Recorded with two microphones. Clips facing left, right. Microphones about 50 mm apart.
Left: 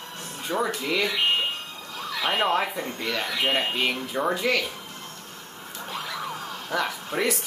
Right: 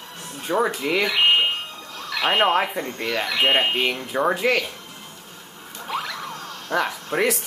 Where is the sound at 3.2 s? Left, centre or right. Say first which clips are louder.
Right 6 dB; right.